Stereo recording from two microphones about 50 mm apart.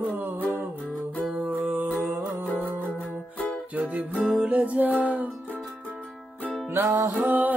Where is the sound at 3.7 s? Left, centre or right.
Right.